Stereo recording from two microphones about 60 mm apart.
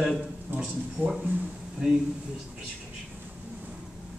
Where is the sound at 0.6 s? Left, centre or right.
Centre.